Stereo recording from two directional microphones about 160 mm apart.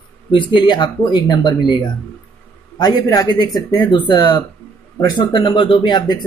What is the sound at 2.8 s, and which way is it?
Speech, 25° left (ahead or behind).